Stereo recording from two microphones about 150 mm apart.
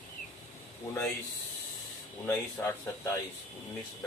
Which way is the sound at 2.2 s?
15° left (ahead or behind).